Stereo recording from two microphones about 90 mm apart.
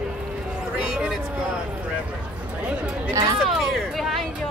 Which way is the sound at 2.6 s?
10° right (ahead or behind).